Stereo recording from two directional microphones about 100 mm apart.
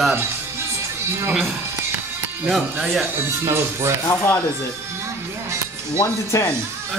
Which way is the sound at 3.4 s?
25° right (ahead or behind).